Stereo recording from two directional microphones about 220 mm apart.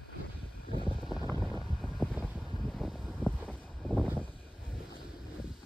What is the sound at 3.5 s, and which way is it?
Wind noise, centre (ahead or behind).